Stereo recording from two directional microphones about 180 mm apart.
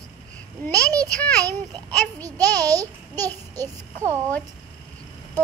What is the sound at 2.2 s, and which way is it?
A child's voice, 20° right (ahead or behind).